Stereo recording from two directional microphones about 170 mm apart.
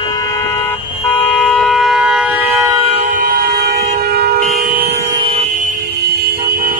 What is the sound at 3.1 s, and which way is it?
Vehicle horn, 70° right (ahead or behind).